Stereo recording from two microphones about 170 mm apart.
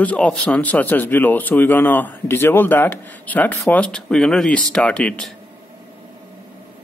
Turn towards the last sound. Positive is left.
turn(degrees=5)  # may be behind; listen again after turning